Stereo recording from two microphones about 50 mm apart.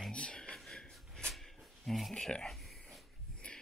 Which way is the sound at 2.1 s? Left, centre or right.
Centre.